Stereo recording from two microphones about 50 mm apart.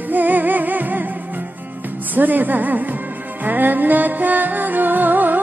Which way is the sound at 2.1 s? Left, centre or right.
Right.